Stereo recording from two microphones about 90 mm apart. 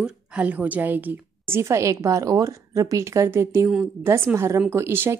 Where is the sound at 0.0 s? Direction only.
10° right (ahead or behind).